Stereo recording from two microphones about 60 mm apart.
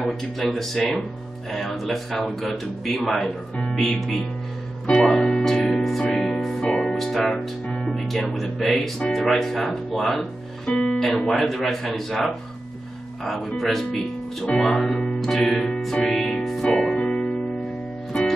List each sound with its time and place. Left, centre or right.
0.0 s speech: centre
5.0 s music: centre
6.9 s music: centre
7.7 s speech: centre
13.2 s speech: centre
15.2 s music: centre
16.6 s music: centre